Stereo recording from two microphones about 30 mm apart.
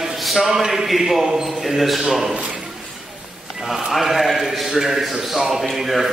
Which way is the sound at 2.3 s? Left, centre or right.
Right.